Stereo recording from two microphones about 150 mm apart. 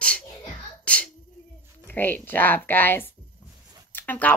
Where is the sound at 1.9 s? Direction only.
10° left (ahead or behind).